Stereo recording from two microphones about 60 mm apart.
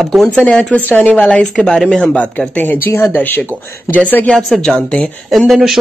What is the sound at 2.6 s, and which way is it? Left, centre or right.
Speech, left.